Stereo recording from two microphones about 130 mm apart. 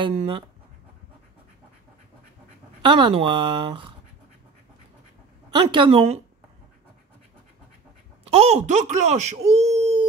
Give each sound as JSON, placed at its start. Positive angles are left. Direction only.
{"t": 0.0, "sound": "speech", "side_deg": -45}
{"t": 2.8, "sound": "speech", "side_deg": -40}
{"t": 5.5, "sound": "speech", "side_deg": -40}
{"t": 8.3, "sound": "speech", "side_deg": -55}